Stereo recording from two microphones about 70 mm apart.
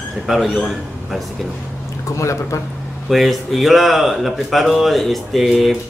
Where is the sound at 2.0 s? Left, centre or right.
Left.